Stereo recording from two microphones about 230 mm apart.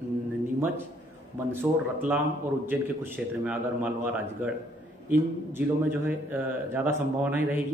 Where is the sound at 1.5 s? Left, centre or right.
Centre.